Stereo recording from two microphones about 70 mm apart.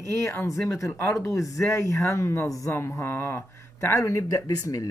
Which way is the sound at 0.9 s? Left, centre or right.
Left.